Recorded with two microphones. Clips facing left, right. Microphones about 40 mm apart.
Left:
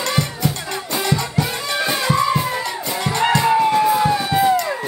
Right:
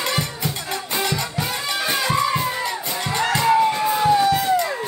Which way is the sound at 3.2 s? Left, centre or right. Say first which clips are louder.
Left 3 dB; left.